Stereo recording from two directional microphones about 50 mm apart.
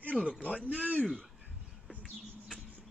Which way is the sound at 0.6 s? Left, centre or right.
Right.